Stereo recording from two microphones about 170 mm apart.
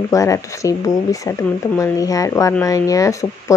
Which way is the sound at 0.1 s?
20° left (ahead or behind).